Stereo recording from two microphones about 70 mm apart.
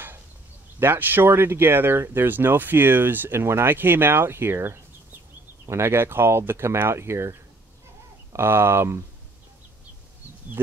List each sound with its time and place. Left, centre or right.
0.7 s speech: right